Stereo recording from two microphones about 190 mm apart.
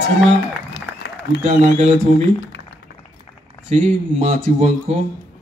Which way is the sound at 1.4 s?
40° right (ahead or behind).